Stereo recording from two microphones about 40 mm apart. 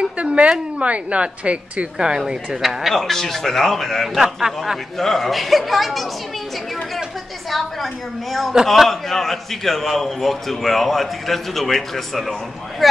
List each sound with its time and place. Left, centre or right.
0.0 s a woman's voice: right
2.0 s speech: centre
2.8 s a man's voice: centre
4.2 s speech: centre
4.9 s a man's voice: centre
7.5 s a man's voice: centre